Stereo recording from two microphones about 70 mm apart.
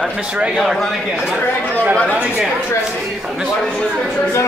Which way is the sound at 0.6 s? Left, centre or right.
Centre.